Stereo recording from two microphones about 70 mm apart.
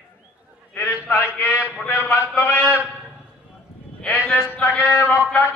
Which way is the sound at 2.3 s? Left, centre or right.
Left.